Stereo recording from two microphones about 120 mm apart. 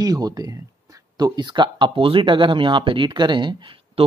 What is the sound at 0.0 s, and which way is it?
Speech, 30° right (ahead or behind).